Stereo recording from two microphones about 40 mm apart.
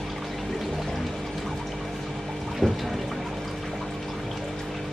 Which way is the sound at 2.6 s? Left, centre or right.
Centre.